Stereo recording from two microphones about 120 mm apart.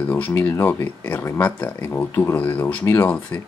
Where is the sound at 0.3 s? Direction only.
20° left (ahead or behind).